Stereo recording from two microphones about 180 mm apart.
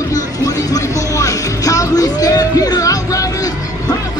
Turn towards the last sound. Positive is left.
turn(degrees=20)  # may be behind; listen again after turning